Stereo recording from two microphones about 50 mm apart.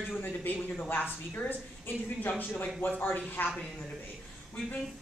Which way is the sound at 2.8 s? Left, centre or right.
Left.